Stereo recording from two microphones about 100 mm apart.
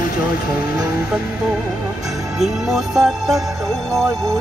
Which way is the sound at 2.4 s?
5° right (ahead or behind).